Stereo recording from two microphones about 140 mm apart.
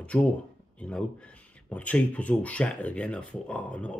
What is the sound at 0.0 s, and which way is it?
Speech, 10° left (ahead or behind).